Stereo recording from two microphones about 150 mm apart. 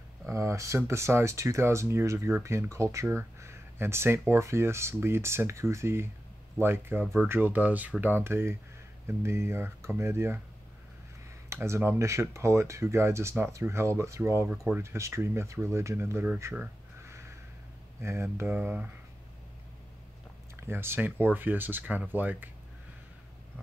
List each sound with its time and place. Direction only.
0.3 s speech: 20° right (ahead or behind)
3.3 s a sound: 15° right (ahead or behind)
4.3 s speech: 20° right (ahead or behind)
11.4 s speech: 20° right (ahead or behind)
18.0 s speech: 15° right (ahead or behind)
20.6 s speech: 15° right (ahead or behind)